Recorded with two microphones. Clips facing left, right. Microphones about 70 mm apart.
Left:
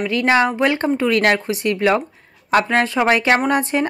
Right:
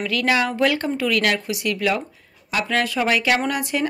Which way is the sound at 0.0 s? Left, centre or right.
Left.